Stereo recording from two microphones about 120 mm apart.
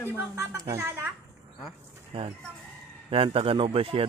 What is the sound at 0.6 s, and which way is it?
Speech, 25° right (ahead or behind).